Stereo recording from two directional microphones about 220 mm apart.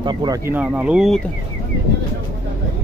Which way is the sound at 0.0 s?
20° right (ahead or behind).